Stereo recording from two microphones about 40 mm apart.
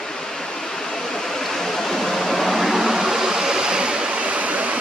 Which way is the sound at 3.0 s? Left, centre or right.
Centre.